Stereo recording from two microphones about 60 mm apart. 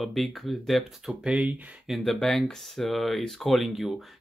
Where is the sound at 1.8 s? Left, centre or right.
Centre.